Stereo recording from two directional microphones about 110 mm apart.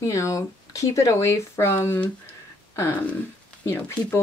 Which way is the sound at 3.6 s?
20° left (ahead or behind).